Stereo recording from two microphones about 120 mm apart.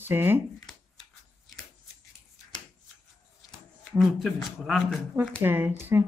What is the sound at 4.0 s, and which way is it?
Speech, centre (ahead or behind).